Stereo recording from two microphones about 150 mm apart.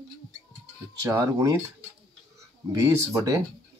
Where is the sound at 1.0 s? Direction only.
20° right (ahead or behind).